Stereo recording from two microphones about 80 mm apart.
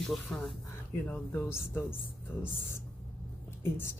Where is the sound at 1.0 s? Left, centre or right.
Centre.